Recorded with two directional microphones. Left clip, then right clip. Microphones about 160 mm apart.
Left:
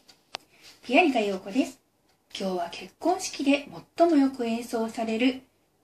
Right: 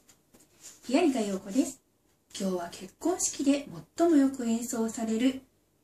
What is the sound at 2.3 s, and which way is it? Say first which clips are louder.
A woman's voice: left 4 dB; 45° right (ahead or behind).